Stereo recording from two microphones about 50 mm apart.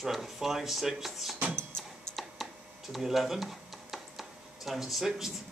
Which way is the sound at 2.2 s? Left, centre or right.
Centre.